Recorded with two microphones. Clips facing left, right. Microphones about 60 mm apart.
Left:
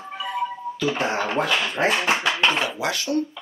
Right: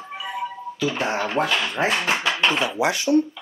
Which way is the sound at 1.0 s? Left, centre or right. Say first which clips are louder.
Right 1 dB; centre.